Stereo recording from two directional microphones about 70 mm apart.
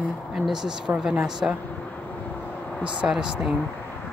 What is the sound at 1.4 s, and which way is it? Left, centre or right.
Speech, centre.